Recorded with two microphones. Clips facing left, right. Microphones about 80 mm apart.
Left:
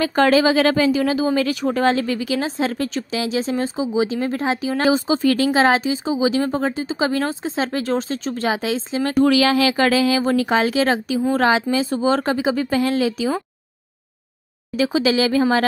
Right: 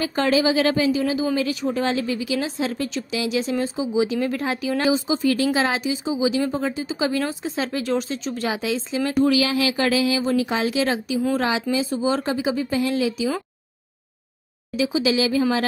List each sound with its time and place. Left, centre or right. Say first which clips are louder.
0.0 s speech: left 4 dB; left
4.8 s speech: left 4 dB; left
7.4 s speech: left 3 dB; left
9.2 s speech: left 4 dB; left
12.8 s speech: left 3 dB; left
14.8 s speech: left 3 dB; left